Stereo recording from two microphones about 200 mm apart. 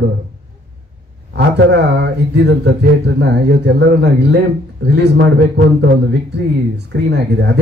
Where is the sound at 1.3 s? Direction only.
60° right (ahead or behind).